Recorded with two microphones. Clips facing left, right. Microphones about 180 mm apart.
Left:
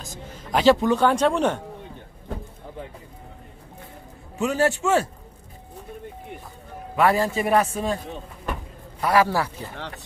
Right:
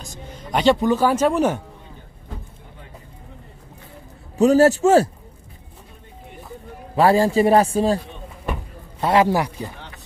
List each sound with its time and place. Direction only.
0.0 s speech: centre (ahead or behind)
4.4 s a man's voice: 40° right (ahead or behind)
7.0 s a man's voice: 30° right (ahead or behind)
9.0 s a man's voice: 25° right (ahead or behind)